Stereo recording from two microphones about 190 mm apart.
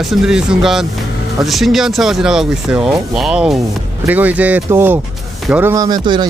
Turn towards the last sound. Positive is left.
turn(degrees=-20)  # may be behind; listen again after turning